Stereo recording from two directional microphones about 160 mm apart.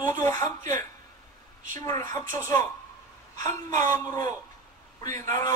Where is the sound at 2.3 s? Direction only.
15° left (ahead or behind).